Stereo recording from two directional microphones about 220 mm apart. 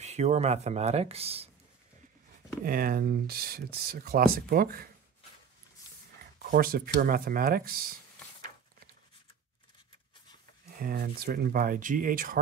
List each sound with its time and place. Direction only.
0.0 s speech: 30° right (ahead or behind)
2.6 s speech: 40° right (ahead or behind)
6.4 s speech: 40° right (ahead or behind)
10.8 s speech: 40° right (ahead or behind)